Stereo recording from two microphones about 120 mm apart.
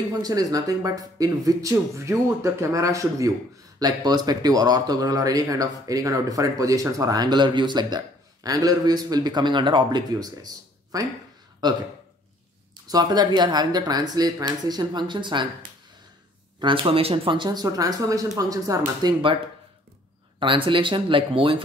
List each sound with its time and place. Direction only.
0.1 s speech: 30° right (ahead or behind)
12.8 s speech: 35° right (ahead or behind)
16.5 s speech: 45° right (ahead or behind); by 19.1 s 30° right (ahead or behind)
20.3 s speech: 45° right (ahead or behind)